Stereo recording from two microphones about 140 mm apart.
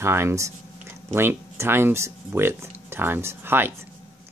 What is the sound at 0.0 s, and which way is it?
Speech, 20° right (ahead or behind).